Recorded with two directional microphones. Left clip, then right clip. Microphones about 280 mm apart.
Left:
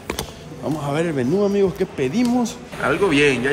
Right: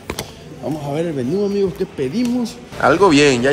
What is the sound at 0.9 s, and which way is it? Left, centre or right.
Speech, centre.